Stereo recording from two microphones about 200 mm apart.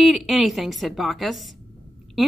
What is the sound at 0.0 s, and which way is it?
A woman's voice, centre (ahead or behind).